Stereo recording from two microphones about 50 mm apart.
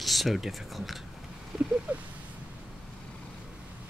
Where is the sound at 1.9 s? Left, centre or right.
Right.